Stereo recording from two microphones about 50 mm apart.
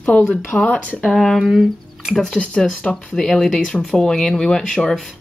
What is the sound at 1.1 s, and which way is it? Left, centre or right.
Speech, centre.